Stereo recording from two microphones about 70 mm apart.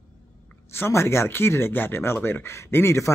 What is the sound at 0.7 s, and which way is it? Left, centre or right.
Speech, left.